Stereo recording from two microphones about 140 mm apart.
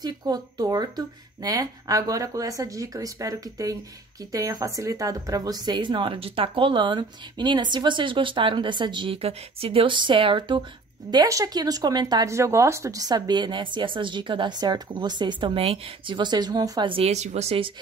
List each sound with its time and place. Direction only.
0.0 s speech: 30° right (ahead or behind)
16.9 s speech: 50° right (ahead or behind)